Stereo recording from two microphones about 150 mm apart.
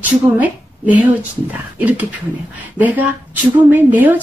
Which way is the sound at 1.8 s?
10° right (ahead or behind).